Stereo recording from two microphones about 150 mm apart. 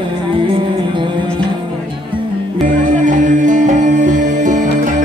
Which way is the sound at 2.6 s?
60° right (ahead or behind).